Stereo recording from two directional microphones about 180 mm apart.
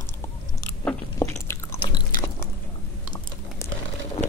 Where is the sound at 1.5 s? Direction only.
20° left (ahead or behind).